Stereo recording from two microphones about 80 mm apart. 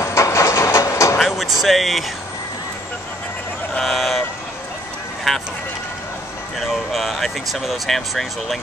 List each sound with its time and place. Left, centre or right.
0.0 s train: left
1.2 s a sound: centre
3.8 s vehicle: centre
5.3 s run: centre
6.6 s speech: centre